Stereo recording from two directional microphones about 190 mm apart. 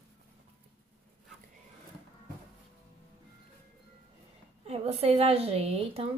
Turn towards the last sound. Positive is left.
turn(degrees=-30)  # may be behind; listen again after turning